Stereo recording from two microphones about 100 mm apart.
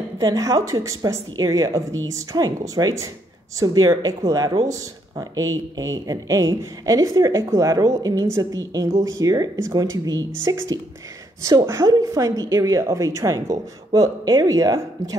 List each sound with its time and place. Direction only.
0.2 s speech: 35° right (ahead or behind)